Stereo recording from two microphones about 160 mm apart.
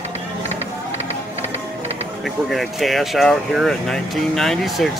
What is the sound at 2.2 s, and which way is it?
Speech, centre (ahead or behind).